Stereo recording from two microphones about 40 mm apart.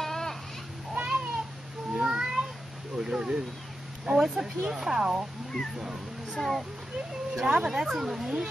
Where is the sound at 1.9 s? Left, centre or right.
Centre.